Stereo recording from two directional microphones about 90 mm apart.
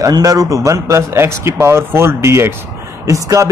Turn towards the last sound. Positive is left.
turn(degrees=-35)  # may be behind; listen again after turning